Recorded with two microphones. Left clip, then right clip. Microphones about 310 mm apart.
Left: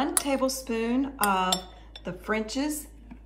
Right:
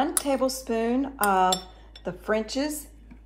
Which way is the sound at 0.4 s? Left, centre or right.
Centre.